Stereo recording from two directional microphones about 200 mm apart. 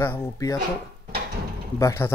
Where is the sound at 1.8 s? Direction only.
15° left (ahead or behind).